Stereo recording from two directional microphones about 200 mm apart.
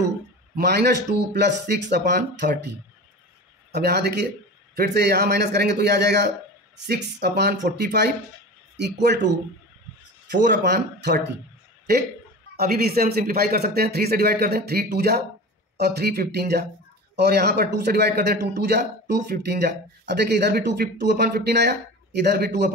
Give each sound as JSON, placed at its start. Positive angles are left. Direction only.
{"t": 0.6, "sound": "speech", "side_deg": -55}
{"t": 3.7, "sound": "speech", "side_deg": -55}
{"t": 10.4, "sound": "speech", "side_deg": -55}
{"t": 12.5, "sound": "speech", "side_deg": -50}